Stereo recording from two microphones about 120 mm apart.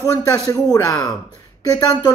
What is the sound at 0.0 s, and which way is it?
A man's voice, 25° left (ahead or behind).